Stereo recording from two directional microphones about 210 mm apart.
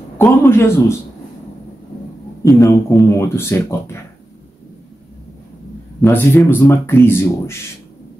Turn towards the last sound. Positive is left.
turn(degrees=10)  # may be behind; listen again after turning